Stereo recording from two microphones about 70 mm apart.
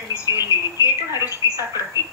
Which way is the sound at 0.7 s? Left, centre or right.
Left.